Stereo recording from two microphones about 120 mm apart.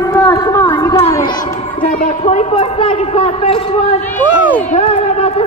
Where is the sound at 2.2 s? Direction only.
60° left (ahead or behind).